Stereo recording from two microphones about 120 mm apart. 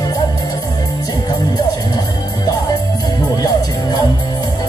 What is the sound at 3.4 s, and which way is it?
Music, 35° left (ahead or behind).